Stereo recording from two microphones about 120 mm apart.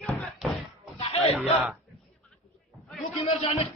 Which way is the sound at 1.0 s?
55° left (ahead or behind).